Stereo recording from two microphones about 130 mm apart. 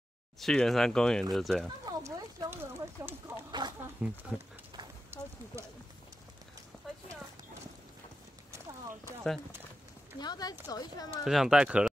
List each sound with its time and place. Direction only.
0.4 s speech: 5° left (ahead or behind)
1.9 s speech: 30° right (ahead or behind)
2.5 s speech: 15° right (ahead or behind)
3.6 s speech: 35° right (ahead or behind)
4.0 s speech: 10° right (ahead or behind)
5.1 s clip-clop: 20° right (ahead or behind)
10.1 s speech: 30° left (ahead or behind)
11.2 s speech: centre (ahead or behind)